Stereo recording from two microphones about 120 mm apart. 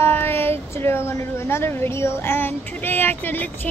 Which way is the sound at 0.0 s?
20° left (ahead or behind).